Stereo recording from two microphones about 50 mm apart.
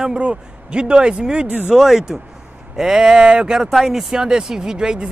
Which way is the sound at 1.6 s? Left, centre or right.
Centre.